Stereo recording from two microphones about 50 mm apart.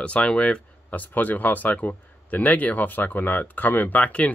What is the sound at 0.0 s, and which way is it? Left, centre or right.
Speech, left.